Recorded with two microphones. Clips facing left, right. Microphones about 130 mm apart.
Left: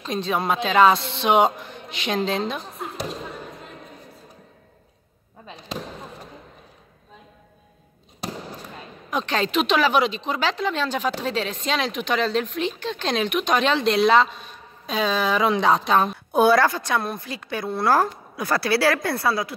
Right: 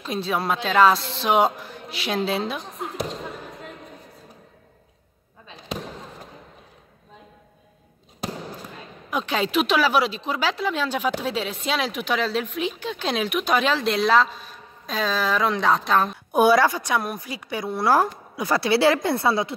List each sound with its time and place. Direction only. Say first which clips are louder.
0.0 s speech: left 1 dB; 5° right (ahead or behind)
9.1 s speech: even; 10° right (ahead or behind)
16.3 s a woman's voice: right 1 dB; 10° right (ahead or behind)